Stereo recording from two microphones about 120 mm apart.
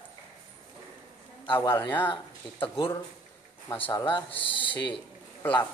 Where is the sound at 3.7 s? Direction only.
45° left (ahead or behind).